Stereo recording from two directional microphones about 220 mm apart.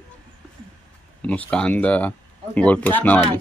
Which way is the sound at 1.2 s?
5° left (ahead or behind).